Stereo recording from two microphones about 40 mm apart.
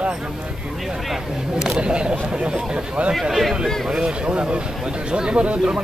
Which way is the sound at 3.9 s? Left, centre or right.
Right.